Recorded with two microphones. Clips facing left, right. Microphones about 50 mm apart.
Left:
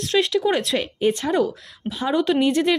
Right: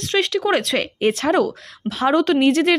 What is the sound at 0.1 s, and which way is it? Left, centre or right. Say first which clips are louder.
Speech: right 1 dB; right.